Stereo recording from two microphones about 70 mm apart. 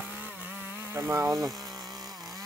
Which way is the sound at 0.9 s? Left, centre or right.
Right.